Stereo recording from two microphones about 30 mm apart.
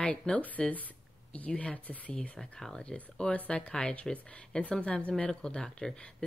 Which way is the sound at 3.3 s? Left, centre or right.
Left.